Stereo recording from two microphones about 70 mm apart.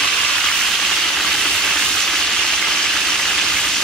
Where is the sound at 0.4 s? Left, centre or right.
Centre.